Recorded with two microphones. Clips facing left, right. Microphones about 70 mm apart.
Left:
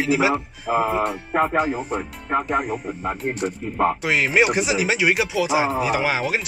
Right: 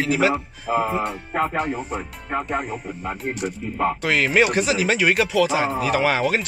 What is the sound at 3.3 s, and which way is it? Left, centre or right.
Speech, left.